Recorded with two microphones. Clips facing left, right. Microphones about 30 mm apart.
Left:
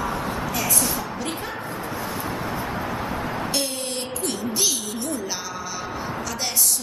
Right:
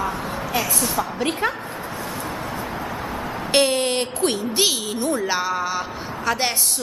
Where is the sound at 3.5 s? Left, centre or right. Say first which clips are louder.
Right 9 dB; right.